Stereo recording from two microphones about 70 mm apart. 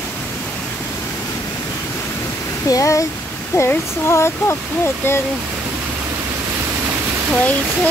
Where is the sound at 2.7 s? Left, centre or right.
Left.